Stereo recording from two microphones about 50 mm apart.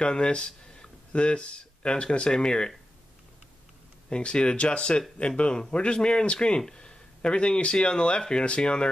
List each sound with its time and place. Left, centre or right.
0.0 s speech: centre
4.1 s speech: centre